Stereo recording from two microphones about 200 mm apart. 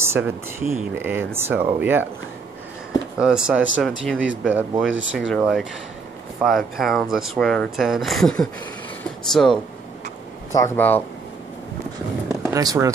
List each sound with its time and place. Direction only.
0.0 s speech: 10° right (ahead or behind)
3.2 s speech: 5° right (ahead or behind)
10.5 s speech: 10° left (ahead or behind)
12.4 s speech: 15° right (ahead or behind)